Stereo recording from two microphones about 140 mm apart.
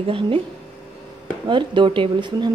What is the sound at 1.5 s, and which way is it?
A woman's voice, 35° right (ahead or behind).